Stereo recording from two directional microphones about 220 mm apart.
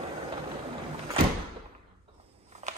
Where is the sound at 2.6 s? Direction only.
35° right (ahead or behind).